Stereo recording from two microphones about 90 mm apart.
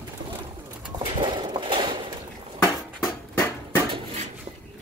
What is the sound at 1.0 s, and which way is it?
Clip-clop, 70° right (ahead or behind).